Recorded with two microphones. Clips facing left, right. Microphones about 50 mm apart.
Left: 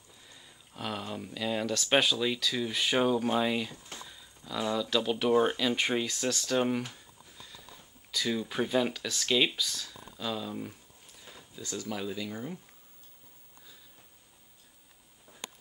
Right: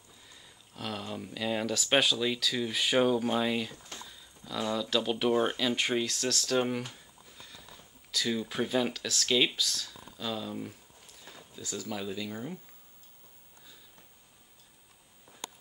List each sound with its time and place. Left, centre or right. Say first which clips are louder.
0.2 s speech: left 1 dB; centre
8.1 s speech: even; centre